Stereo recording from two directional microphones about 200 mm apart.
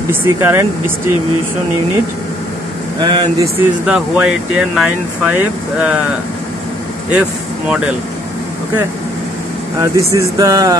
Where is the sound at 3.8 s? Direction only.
5° right (ahead or behind).